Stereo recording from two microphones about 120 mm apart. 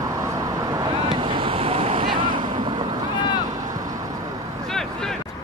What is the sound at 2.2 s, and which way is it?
Boat, 40° right (ahead or behind).